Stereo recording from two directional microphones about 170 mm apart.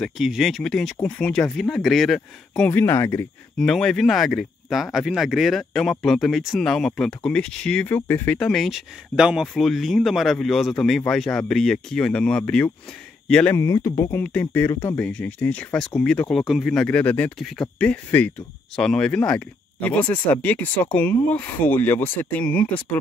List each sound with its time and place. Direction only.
0.0 s speech: centre (ahead or behind); by 3.3 s 15° left (ahead or behind)
3.5 s speech: 5° left (ahead or behind)
13.7 s speech: 20° left (ahead or behind)